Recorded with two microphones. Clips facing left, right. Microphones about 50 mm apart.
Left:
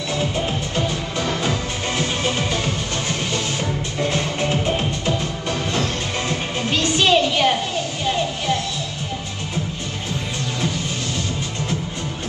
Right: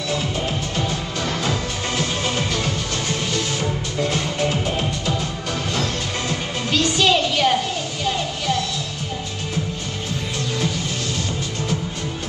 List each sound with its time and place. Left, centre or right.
0.7 s music: left
5.8 s music: left